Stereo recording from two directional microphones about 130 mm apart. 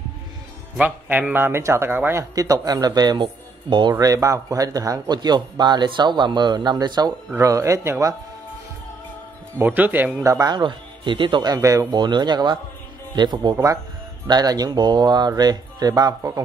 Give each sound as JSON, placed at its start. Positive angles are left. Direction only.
{"t": 0.7, "sound": "speech", "side_deg": -10}
{"t": 2.3, "sound": "a man's voice", "side_deg": -25}
{"t": 7.2, "sound": "a man's voice", "side_deg": -20}
{"t": 9.6, "sound": "speech", "side_deg": -15}
{"t": 10.2, "sound": "speech", "side_deg": -25}